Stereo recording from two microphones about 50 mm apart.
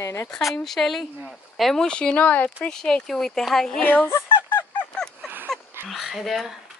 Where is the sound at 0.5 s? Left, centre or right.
Centre.